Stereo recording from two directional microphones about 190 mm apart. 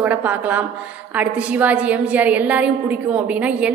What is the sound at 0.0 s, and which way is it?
A woman's voice, 10° right (ahead or behind).